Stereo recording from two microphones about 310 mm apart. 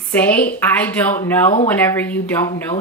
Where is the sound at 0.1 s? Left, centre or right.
Centre.